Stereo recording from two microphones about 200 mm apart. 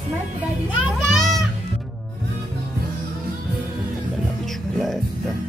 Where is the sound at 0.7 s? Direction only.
Centre (ahead or behind).